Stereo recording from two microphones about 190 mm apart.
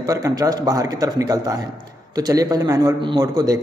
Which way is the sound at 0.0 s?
20° right (ahead or behind).